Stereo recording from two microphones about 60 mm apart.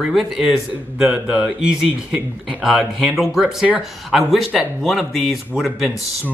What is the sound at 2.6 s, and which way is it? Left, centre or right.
Speech, centre.